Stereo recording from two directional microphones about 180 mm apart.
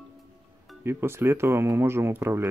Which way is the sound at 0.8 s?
15° right (ahead or behind).